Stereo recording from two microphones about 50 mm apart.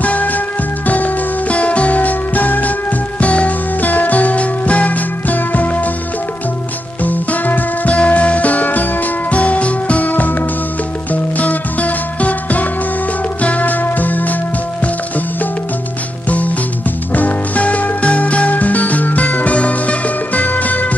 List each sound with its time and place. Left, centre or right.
0.0 s music: left
7.0 s music: left
16.3 s music: left